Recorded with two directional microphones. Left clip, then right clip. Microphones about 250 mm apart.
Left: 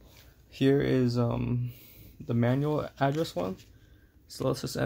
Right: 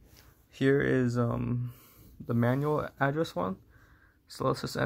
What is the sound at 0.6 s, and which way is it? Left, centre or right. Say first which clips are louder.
Speech: left 1 dB; centre.